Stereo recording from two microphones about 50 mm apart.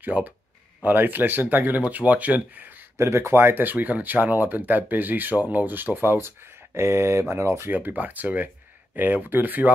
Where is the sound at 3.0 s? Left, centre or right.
Right.